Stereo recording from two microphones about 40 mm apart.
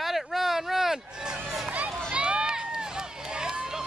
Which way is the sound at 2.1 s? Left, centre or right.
Right.